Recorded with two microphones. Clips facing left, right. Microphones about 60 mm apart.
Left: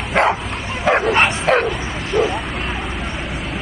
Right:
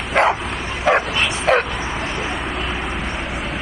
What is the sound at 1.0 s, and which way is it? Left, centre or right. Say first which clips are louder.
Bow-wow: left 6 dB; left.